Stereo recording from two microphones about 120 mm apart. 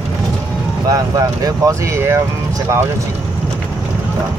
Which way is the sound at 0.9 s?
30° right (ahead or behind).